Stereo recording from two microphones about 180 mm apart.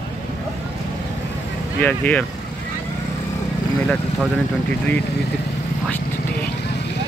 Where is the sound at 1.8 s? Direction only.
10° left (ahead or behind).